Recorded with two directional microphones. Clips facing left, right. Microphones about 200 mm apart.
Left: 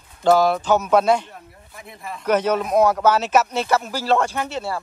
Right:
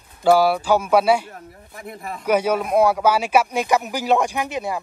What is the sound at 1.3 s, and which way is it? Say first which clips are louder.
Speech: right 3 dB; 55° right (ahead or behind).